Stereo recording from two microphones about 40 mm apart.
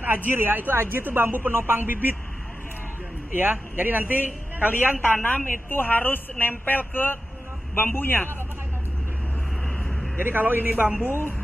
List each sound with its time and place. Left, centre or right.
0.0 s speech: right
3.3 s a man's voice: right
5.1 s a woman's voice: left
10.1 s speech: right
11.1 s a woman's voice: left